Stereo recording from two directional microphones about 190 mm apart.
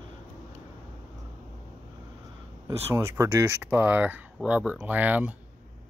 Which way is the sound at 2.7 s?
15° right (ahead or behind).